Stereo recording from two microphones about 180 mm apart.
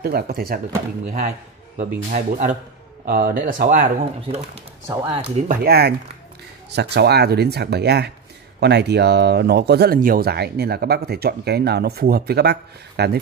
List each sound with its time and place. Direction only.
0.0 s speech: 55° right (ahead or behind)
1.0 s speech: 45° right (ahead or behind); by 5.3 s 30° right (ahead or behind)
5.5 s speech: 60° right (ahead or behind)